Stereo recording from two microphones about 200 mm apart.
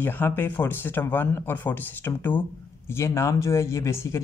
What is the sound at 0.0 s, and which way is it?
Speech, 10° left (ahead or behind).